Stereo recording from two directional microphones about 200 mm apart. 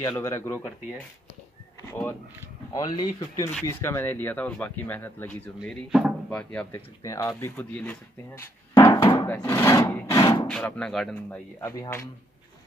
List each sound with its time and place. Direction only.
0.0 s speech: 15° left (ahead or behind)
1.9 s speech: 10° left (ahead or behind)
7.0 s speech: 15° left (ahead or behind)
10.4 s speech: 5° left (ahead or behind)